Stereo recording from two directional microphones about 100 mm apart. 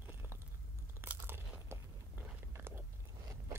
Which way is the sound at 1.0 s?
20° right (ahead or behind).